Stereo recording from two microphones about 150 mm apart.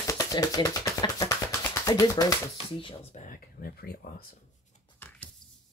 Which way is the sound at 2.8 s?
50° left (ahead or behind).